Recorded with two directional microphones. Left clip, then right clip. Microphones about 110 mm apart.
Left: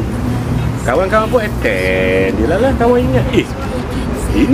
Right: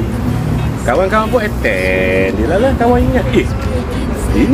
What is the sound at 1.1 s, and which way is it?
Speech, 15° left (ahead or behind).